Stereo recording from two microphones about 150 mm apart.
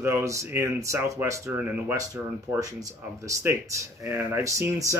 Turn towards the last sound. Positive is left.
turn(degrees=-20)  # may be behind; listen again after turning